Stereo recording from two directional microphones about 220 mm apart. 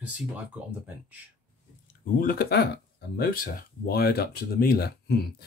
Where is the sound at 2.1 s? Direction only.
45° left (ahead or behind).